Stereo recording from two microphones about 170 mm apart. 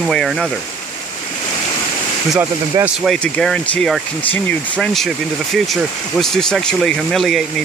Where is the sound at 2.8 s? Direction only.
20° right (ahead or behind).